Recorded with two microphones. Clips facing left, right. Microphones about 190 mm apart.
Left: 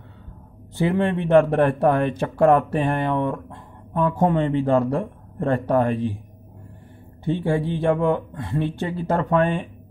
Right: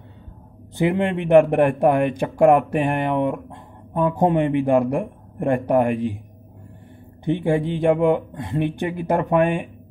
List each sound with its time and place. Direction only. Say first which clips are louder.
0.7 s a man's voice: right 1 dB; 15° right (ahead or behind)
7.2 s a man's voice: right 2 dB; 15° right (ahead or behind)